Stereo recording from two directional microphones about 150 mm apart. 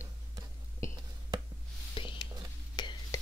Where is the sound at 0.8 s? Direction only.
20° left (ahead or behind).